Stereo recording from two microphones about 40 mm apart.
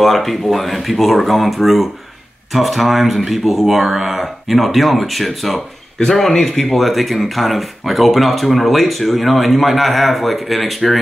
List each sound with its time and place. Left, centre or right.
0.0 s speech: centre